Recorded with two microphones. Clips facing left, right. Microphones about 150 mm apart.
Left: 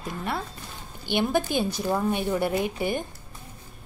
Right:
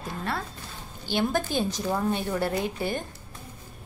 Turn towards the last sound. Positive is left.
turn(degrees=15)  # may be behind; listen again after turning